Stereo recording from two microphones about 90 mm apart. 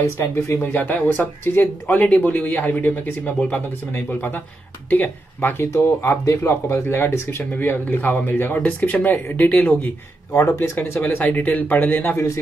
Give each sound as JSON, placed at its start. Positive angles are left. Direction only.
{"t": 0.0, "sound": "speech", "side_deg": 30}
{"t": 11.0, "sound": "speech", "side_deg": 20}